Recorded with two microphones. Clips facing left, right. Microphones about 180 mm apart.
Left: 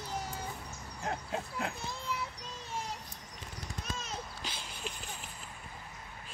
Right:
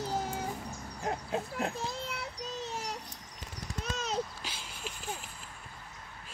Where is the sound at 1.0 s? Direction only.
20° right (ahead or behind).